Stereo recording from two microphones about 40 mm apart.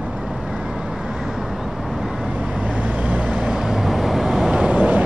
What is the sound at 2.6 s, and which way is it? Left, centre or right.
Vehicle, right.